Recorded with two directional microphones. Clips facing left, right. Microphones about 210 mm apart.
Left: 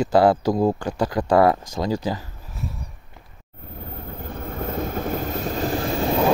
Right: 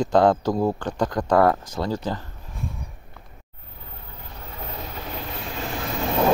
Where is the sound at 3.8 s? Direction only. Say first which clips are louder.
Left 9 dB; 50° left (ahead or behind).